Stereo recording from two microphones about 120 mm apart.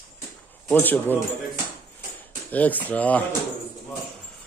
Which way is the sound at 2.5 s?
15° left (ahead or behind).